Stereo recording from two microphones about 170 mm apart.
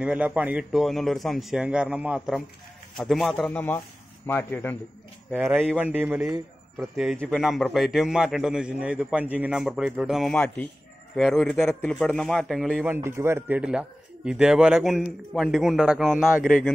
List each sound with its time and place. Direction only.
0.0 s a man's voice: 10° right (ahead or behind); by 4.7 s 10° left (ahead or behind)
5.4 s a man's voice: 10° right (ahead or behind)
7.0 s a man's voice: centre (ahead or behind)
12.8 s a man's voice: 15° right (ahead or behind)